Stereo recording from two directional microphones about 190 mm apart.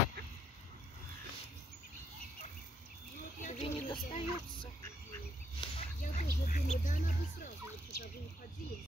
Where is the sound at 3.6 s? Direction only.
30° left (ahead or behind).